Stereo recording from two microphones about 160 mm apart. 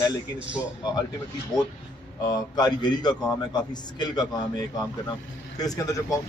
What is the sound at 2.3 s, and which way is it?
Speech, 25° left (ahead or behind).